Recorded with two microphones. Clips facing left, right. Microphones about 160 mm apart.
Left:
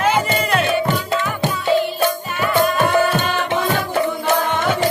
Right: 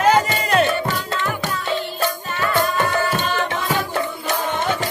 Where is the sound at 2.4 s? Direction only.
10° left (ahead or behind).